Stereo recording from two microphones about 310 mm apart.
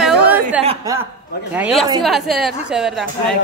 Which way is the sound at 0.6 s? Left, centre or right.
Centre.